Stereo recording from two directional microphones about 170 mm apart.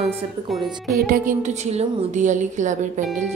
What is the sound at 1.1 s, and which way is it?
A woman's voice, 50° right (ahead or behind).